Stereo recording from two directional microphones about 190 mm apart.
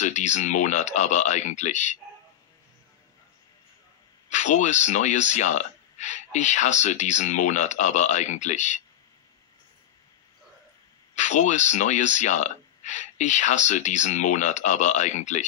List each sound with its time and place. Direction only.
0.0 s speech: 40° left (ahead or behind)
4.3 s speech: 40° left (ahead or behind)
11.1 s speech: 40° left (ahead or behind)